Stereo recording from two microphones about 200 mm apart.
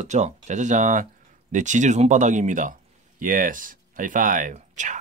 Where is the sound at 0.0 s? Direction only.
35° right (ahead or behind).